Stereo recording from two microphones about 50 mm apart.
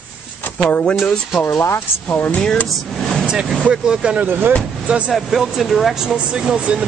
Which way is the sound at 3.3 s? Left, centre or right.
Centre.